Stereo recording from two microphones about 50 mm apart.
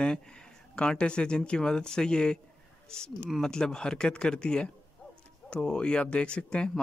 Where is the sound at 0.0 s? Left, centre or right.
Centre.